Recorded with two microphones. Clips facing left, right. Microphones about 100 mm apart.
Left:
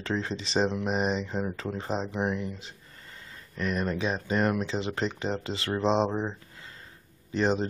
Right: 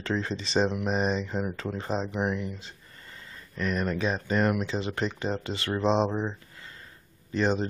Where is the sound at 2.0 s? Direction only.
20° left (ahead or behind).